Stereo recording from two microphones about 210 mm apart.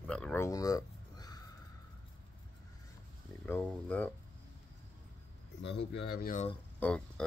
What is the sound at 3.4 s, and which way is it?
Speech, 10° left (ahead or behind).